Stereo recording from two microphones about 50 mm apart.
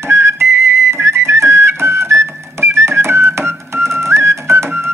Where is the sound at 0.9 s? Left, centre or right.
Right.